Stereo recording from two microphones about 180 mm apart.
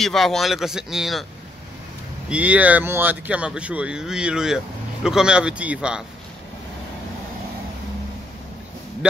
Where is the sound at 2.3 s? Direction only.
10° right (ahead or behind).